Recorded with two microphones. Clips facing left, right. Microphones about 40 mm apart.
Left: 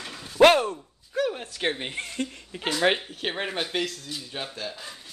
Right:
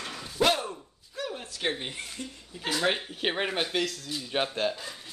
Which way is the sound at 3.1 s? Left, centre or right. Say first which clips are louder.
Right 1 dB; centre.